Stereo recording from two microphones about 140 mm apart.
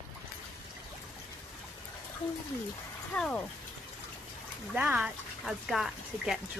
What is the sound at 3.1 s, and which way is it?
Speech, 5° left (ahead or behind).